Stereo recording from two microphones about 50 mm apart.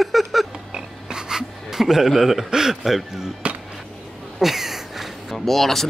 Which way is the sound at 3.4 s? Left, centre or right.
Right.